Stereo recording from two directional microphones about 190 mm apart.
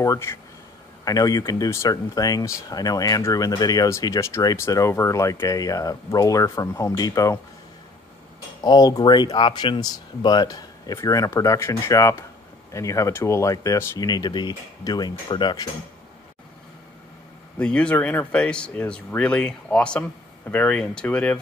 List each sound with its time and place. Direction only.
0.0 s speech: 15° left (ahead or behind)
8.6 s speech: 20° left (ahead or behind)
17.6 s speech: 5° left (ahead or behind)